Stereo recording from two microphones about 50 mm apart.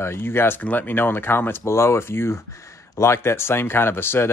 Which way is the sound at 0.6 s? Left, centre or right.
Left.